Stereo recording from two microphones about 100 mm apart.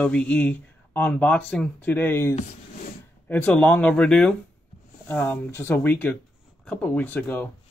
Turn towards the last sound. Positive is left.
turn(degrees=15)  # may be behind; listen again after turning